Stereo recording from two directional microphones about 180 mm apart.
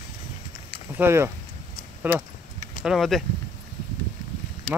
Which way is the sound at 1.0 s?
15° right (ahead or behind).